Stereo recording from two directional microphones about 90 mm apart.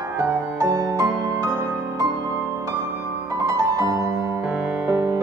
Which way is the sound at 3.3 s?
35° right (ahead or behind).